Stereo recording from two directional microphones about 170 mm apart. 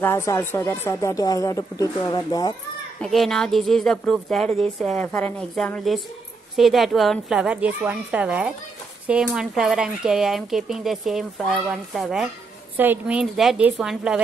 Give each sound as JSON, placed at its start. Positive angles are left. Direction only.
{"t": 0.0, "sound": "speech", "side_deg": 15}
{"t": 3.0, "sound": "speech", "side_deg": 0}